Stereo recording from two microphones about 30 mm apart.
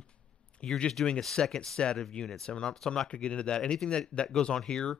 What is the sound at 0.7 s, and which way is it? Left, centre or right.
Speech, left.